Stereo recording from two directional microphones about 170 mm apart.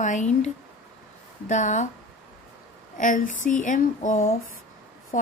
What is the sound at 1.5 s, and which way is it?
Speech, 45° left (ahead or behind).